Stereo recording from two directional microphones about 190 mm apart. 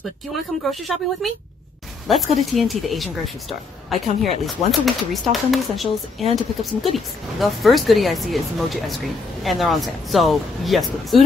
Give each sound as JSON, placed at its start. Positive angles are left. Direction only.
{"t": 0.7, "sound": "speech", "side_deg": 0}